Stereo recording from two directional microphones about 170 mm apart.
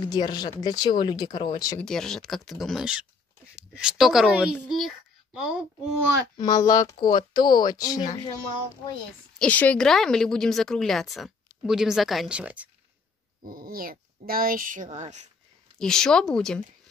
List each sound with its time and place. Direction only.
0.1 s speech: 25° left (ahead or behind)
1.8 s speech: 5° left (ahead or behind)
6.3 s speech: 20° left (ahead or behind)
9.4 s speech: 10° left (ahead or behind); by 12.6 s 10° right (ahead or behind)
13.5 s speech: 55° right (ahead or behind)
15.8 s speech: 5° left (ahead or behind)